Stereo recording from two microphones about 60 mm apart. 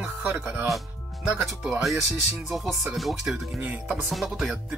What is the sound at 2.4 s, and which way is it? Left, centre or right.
Music, centre.